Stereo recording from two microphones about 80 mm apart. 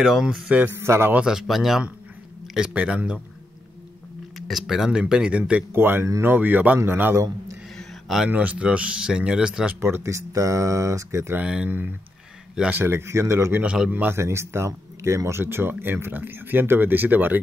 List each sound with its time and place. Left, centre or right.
0.0 s speech: centre
0.6 s speech: right
1.1 s speech: centre
4.4 s speech: centre
5.7 s speech: right
7.7 s a sound: centre
8.3 s speech: centre
9.8 s speech: right
11.4 s speech: centre
12.7 s speech: right
13.9 s speech: right